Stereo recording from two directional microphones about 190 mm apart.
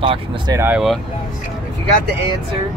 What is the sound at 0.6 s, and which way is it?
Speech, 5° right (ahead or behind).